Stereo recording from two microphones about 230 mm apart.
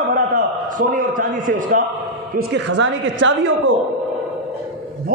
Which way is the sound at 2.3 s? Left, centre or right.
Right.